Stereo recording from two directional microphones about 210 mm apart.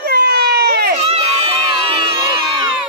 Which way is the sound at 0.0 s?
50° right (ahead or behind).